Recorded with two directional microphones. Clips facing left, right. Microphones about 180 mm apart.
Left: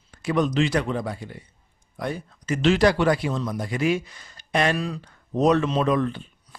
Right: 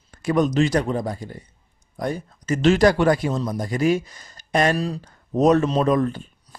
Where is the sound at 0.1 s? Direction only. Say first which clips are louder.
Right 3 dB; 45° right (ahead or behind).